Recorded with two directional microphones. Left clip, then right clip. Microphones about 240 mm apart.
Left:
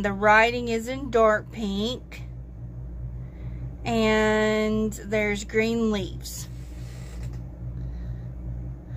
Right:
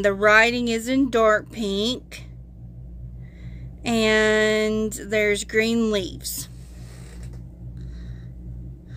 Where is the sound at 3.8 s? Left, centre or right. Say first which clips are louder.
Right 3 dB; right.